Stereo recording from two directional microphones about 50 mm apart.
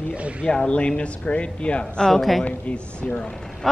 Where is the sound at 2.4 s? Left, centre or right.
Left.